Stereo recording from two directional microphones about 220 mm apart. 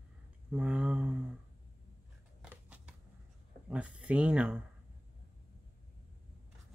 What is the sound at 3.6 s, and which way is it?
Speech, 5° right (ahead or behind).